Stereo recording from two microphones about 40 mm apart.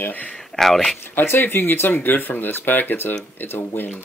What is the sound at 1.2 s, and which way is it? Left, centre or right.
Speech, left.